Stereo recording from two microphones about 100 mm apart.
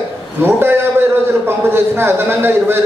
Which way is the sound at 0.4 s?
20° right (ahead or behind).